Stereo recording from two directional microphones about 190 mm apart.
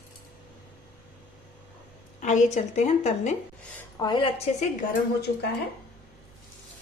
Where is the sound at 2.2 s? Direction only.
40° left (ahead or behind).